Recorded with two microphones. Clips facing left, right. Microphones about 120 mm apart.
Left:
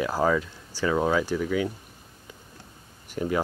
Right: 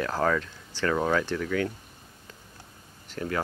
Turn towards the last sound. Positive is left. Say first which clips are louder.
# left 4 dB
turn(degrees=15)  # may be behind; listen again after turning